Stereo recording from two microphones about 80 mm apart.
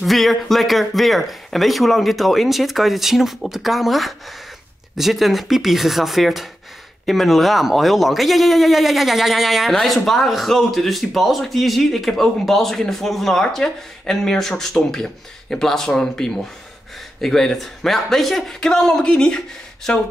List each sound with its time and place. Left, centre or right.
0.0 s a man's voice: centre